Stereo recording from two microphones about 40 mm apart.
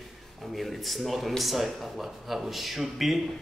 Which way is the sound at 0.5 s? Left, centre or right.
Centre.